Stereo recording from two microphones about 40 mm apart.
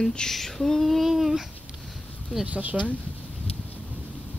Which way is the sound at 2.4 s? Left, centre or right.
Right.